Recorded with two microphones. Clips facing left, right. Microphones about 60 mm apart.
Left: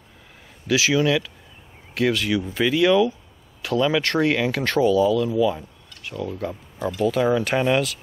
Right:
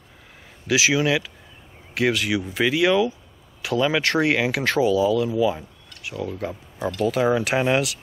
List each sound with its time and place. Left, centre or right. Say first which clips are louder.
0.7 s speech: even; centre
5.9 s a sound: even; centre
7.1 s speech: even; centre